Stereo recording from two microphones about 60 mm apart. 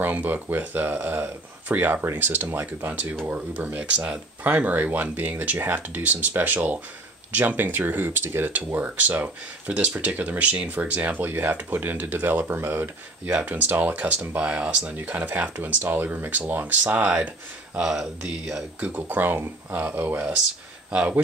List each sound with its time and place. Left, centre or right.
0.0 s speech: right
4.4 s speech: right
17.7 s speech: centre
18.9 s speech: right